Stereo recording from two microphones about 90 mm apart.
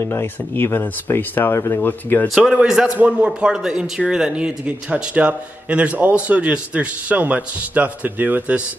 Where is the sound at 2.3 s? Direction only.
10° right (ahead or behind).